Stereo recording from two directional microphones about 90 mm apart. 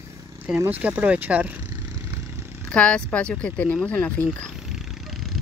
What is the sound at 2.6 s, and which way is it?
Speech, 10° left (ahead or behind).